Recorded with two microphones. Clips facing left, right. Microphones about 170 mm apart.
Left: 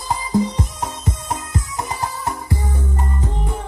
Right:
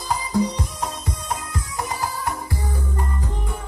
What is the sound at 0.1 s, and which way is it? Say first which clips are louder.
Music: left 2 dB; 25° left (ahead or behind).